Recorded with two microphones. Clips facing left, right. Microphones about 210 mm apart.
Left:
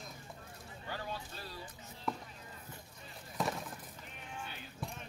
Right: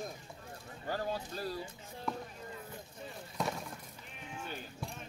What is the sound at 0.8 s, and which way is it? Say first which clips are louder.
Speech: right 6 dB; 40° right (ahead or behind).